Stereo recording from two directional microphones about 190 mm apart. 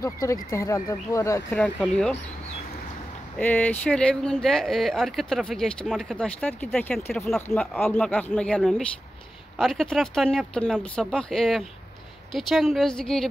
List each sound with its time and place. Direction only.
0.0 s speech: 15° left (ahead or behind)
1.6 s speech: 5° left (ahead or behind)
3.3 s speech: 10° left (ahead or behind)